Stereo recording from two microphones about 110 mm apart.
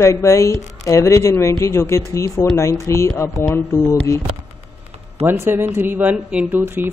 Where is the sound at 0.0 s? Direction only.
25° left (ahead or behind).